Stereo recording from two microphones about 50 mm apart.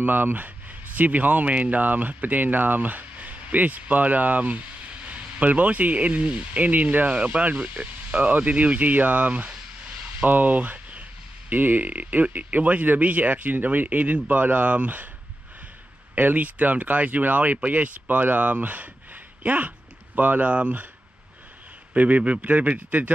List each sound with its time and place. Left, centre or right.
0.0 s speech: right
16.2 s speech: right
21.9 s speech: right